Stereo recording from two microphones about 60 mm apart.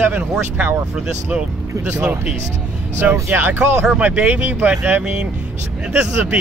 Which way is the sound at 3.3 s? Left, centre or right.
Right.